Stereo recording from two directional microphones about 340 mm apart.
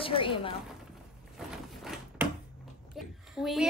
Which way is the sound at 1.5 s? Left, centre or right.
Centre.